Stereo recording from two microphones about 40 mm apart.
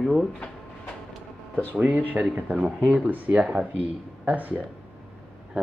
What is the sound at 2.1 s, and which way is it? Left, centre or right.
Speech, right.